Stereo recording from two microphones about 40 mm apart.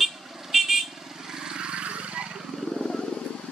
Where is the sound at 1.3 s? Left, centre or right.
Centre.